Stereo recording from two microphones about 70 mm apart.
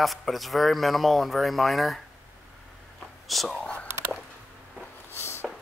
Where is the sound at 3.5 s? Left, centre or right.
Centre.